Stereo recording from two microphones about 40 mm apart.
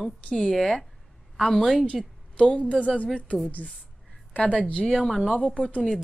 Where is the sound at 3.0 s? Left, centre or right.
Left.